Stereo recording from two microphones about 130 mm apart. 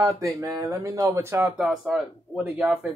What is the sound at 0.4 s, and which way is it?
Speech, 25° right (ahead or behind).